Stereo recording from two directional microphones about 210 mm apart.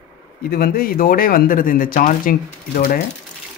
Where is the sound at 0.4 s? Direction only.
45° left (ahead or behind).